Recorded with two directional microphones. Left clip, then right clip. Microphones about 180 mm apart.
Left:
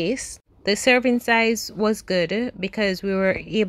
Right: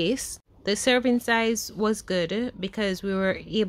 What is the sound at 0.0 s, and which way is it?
Speech, 5° left (ahead or behind).